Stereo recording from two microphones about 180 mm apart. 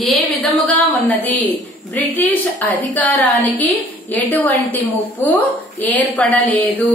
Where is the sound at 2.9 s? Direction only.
10° left (ahead or behind).